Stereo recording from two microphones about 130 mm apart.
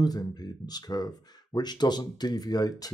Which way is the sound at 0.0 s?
30° left (ahead or behind).